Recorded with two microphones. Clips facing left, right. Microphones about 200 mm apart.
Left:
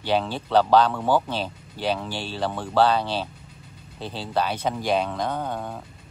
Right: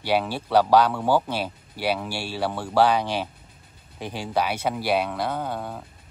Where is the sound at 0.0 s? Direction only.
10° right (ahead or behind).